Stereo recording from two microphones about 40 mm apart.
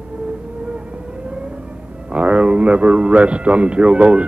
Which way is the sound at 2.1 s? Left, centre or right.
Right.